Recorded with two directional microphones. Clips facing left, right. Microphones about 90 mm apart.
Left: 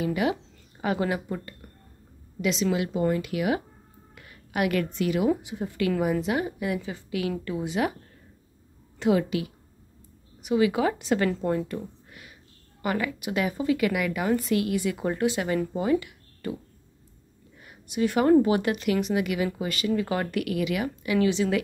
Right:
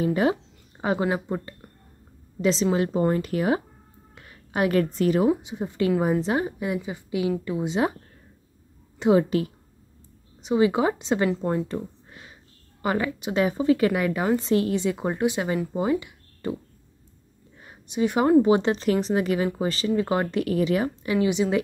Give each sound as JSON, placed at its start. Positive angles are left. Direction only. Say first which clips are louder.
{"t": 0.0, "sound": "a woman's voice", "louder": "right 4 dB", "side_deg": -35}
{"t": 5.3, "sound": "a woman's voice", "louder": "right 2 dB", "side_deg": -20}
{"t": 9.0, "sound": "a woman's voice", "louder": "right 3 dB", "side_deg": -20}
{"t": 10.4, "sound": "a woman's voice", "louder": "right 2 dB", "side_deg": -25}
{"t": 17.6, "sound": "a woman's voice", "louder": "right 2 dB", "side_deg": -25}
{"t": 21.3, "sound": "a woman's voice", "louder": "right 1 dB", "side_deg": -20}